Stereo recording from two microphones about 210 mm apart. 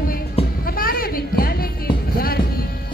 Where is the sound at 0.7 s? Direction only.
45° left (ahead or behind).